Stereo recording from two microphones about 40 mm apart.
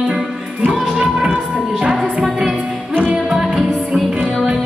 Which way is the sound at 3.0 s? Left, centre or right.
Right.